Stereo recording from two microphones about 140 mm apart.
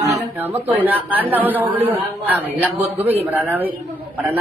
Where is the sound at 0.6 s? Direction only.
10° right (ahead or behind).